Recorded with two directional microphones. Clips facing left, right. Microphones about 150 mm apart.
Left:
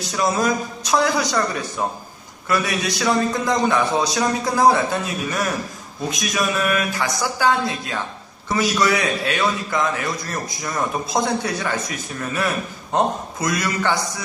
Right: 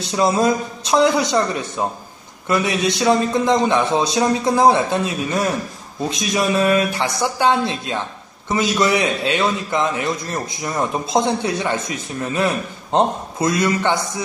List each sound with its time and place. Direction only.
0.0 s a man's voice: 25° right (ahead or behind)